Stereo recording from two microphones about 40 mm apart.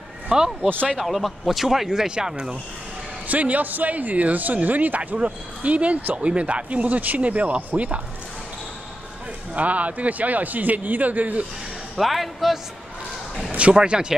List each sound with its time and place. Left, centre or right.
0.3 s speech: right
0.9 s speech: centre
3.3 s a man's voice: right
9.5 s a man's voice: right
12.0 s speech: centre
13.7 s speech: centre